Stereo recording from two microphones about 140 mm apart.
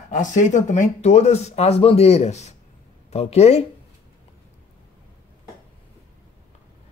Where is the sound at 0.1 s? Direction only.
65° left (ahead or behind); by 3.6 s 50° left (ahead or behind).